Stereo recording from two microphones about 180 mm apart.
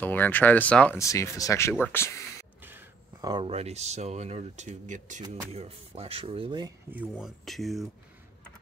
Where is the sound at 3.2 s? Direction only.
20° right (ahead or behind).